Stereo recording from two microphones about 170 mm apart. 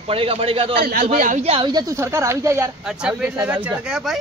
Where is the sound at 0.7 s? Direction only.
60° right (ahead or behind).